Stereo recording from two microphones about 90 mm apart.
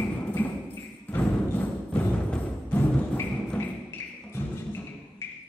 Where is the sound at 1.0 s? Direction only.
20° left (ahead or behind).